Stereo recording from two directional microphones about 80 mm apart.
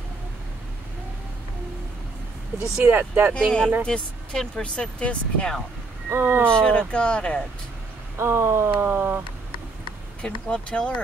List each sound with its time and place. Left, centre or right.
2.6 s speech: right
3.3 s speech: centre
6.0 s speech: right
6.4 s speech: centre
8.2 s speech: right
10.2 s speech: centre